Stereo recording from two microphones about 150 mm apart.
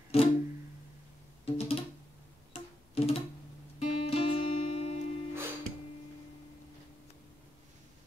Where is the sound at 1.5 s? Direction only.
40° left (ahead or behind).